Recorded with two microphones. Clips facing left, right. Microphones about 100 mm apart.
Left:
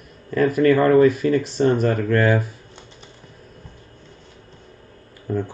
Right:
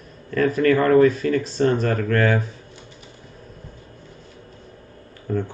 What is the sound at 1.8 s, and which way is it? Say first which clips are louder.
Speech: left 2 dB; 15° left (ahead or behind).